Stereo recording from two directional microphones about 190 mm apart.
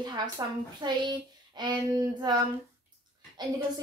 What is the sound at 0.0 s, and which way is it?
A woman's voice, 20° right (ahead or behind).